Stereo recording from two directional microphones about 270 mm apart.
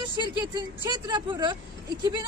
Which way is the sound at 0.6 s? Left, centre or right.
Centre.